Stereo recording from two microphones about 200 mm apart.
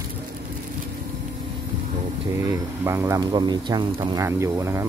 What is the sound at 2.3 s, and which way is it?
Speech, 15° right (ahead or behind).